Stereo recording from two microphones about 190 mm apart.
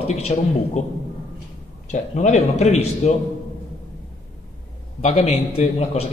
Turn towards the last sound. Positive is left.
turn(degrees=30)  # may be behind; listen again after turning